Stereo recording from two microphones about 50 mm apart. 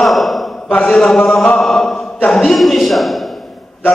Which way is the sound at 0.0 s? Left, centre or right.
Centre.